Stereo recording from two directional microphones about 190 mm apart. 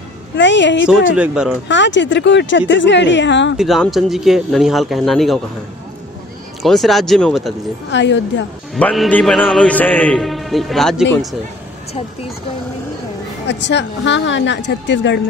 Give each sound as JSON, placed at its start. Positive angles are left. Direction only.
{"t": 0.4, "sound": "speech", "side_deg": 70}
{"t": 0.8, "sound": "a man's voice", "side_deg": -5}
{"t": 1.7, "sound": "speech", "side_deg": 70}
{"t": 3.5, "sound": "a man's voice", "side_deg": 0}
{"t": 6.6, "sound": "a man's voice", "side_deg": 0}
{"t": 7.9, "sound": "speech", "side_deg": 70}
{"t": 8.7, "sound": "a man's voice", "side_deg": 5}
{"t": 13.5, "sound": "speech", "side_deg": 70}